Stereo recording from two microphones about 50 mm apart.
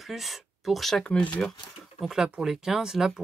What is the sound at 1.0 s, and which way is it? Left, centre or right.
Speech, left.